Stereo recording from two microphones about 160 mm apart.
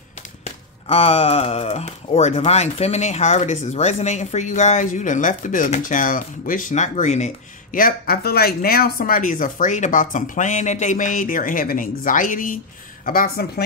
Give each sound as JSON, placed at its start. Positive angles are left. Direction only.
{"t": 0.8, "sound": "speech", "side_deg": 35}